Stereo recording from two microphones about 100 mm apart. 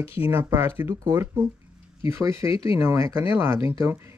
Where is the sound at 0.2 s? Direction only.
25° right (ahead or behind).